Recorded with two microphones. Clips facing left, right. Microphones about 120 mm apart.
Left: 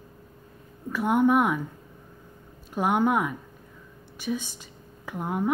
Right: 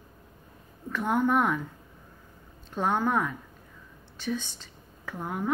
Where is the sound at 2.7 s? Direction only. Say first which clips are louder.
Left 3 dB; 15° left (ahead or behind).